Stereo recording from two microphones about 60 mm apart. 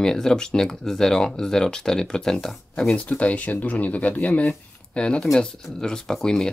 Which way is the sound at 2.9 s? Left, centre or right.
Left.